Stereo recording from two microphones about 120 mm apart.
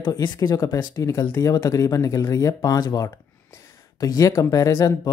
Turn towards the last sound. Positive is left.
turn(degrees=30)  # may be behind; listen again after turning